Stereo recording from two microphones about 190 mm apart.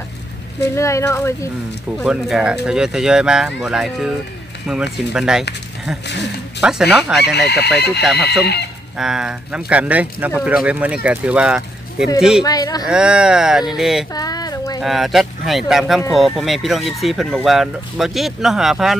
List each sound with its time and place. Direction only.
0.7 s speech: 15° left (ahead or behind)
2.0 s speech: 5° right (ahead or behind)
6.6 s speech: 5° right (ahead or behind)
7.3 s speech: 60° left (ahead or behind)
8.9 s speech: 5° right (ahead or behind)
12.4 s speech: 20° left (ahead or behind)
12.8 s speech: 5° right (ahead or behind)
14.1 s a sound: 20° left (ahead or behind)
14.8 s speech: centre (ahead or behind)